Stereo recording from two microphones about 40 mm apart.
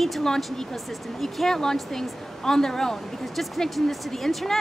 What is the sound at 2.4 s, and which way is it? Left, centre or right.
Speech, centre.